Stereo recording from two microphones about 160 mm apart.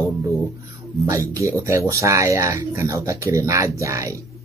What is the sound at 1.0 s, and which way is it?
Speech, 20° right (ahead or behind).